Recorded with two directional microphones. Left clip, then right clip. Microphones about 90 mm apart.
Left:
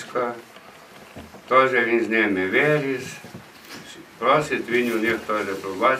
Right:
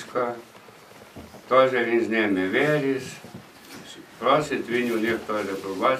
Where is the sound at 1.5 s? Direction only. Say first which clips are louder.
Left 2 dB; 5° left (ahead or behind).